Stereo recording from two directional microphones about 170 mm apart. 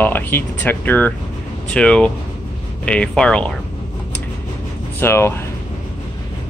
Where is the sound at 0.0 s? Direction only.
10° left (ahead or behind).